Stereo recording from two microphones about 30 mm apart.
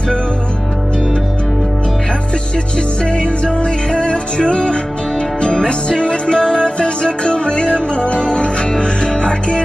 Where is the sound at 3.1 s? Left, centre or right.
Left.